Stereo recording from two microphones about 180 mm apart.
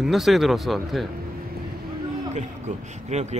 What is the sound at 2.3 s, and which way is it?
A man's voice, 40° right (ahead or behind).